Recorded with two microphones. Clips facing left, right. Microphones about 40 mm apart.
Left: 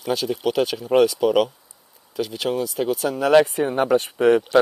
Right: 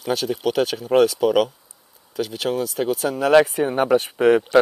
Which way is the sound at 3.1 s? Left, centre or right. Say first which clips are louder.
Right 1 dB; centre.